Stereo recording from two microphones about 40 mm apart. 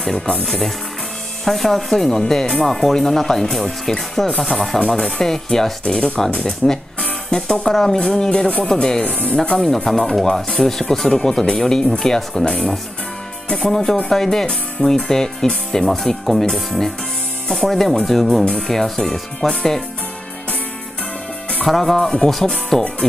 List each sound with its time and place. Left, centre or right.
0.5 s speech: centre
9.8 s speech: centre
21.6 s speech: centre